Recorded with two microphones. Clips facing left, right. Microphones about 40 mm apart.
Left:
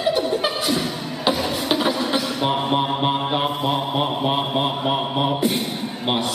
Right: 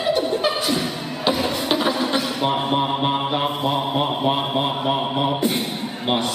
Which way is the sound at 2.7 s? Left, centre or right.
Centre.